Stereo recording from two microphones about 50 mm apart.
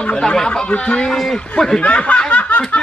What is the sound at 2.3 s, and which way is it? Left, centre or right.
Snicker, left.